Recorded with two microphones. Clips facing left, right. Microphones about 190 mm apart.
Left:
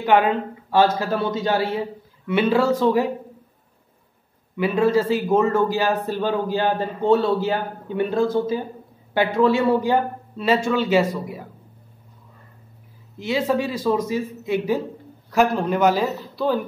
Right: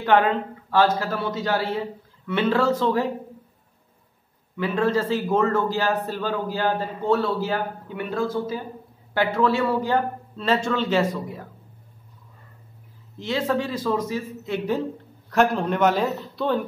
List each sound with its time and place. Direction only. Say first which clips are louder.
0.0 s a man's voice: left 1 dB; 10° left (ahead or behind)
4.6 s a man's voice: left 4 dB; 10° left (ahead or behind)
13.2 s a man's voice: left 3 dB; 10° left (ahead or behind)